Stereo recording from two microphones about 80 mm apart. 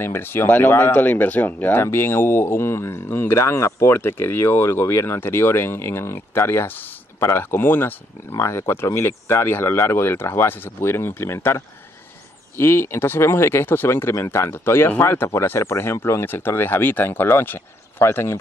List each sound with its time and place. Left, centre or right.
0.0 s speech: left